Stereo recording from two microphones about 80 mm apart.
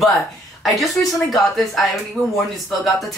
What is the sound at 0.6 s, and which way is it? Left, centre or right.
Speech, centre.